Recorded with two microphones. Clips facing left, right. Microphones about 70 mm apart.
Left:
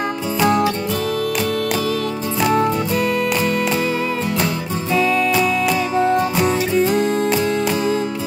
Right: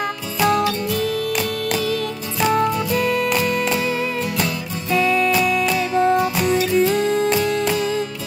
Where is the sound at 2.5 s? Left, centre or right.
Centre.